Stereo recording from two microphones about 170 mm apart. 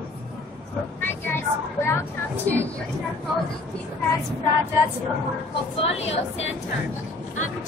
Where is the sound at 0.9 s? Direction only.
15° left (ahead or behind).